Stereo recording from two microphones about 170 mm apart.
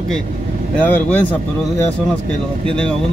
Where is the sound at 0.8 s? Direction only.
10° left (ahead or behind).